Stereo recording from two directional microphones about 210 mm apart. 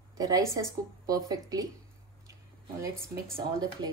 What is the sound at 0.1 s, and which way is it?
A woman's voice, 15° right (ahead or behind).